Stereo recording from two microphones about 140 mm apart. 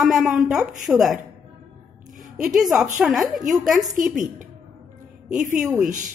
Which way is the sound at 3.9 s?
65° right (ahead or behind).